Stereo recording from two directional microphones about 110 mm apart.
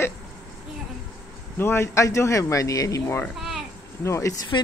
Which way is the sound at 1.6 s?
20° left (ahead or behind).